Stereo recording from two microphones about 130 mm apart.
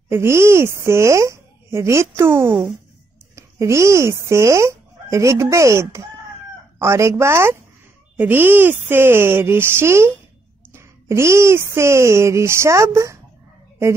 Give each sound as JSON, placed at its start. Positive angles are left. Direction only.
{"t": 0.1, "sound": "a woman's voice", "side_deg": -20}